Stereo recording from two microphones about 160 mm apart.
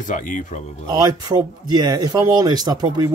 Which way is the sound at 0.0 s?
55° left (ahead or behind).